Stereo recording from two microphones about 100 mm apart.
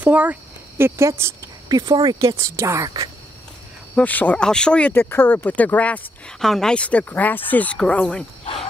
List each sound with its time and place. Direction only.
0.0 s speech: 15° right (ahead or behind)
1.7 s speech: 45° right (ahead or behind)
2.0 s speech: 65° right (ahead or behind)
2.2 s speech: 30° right (ahead or behind)
3.9 s speech: 15° left (ahead or behind)